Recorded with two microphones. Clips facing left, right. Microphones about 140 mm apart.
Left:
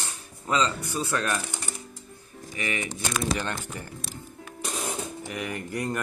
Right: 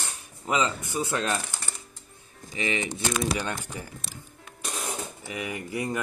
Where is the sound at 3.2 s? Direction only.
5° right (ahead or behind).